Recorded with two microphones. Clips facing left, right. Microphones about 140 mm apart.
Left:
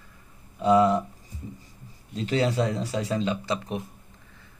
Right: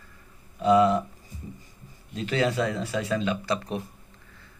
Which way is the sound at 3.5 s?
15° left (ahead or behind).